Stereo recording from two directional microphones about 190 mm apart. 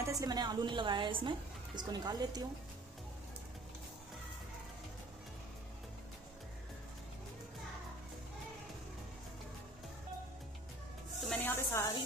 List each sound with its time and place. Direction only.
0.0 s a woman's voice: 20° right (ahead or behind)
11.1 s music: 5° left (ahead or behind)